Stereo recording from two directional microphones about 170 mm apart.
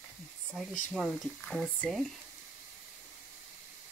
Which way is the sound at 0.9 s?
Centre (ahead or behind).